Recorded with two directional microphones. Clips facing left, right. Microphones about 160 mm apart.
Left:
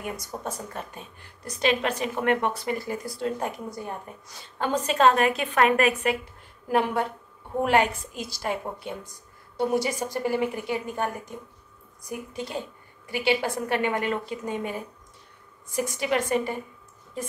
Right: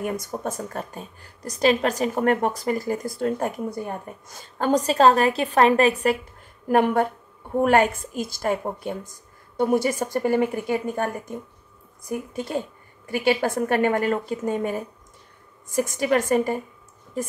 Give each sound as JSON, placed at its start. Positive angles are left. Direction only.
{"t": 0.0, "sound": "a woman's voice", "side_deg": -50}
{"t": 6.7, "sound": "a woman's voice", "side_deg": -50}